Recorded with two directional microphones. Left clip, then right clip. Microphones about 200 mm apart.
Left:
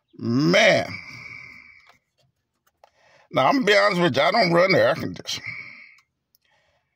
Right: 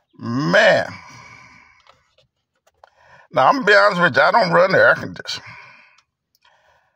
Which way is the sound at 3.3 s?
15° left (ahead or behind).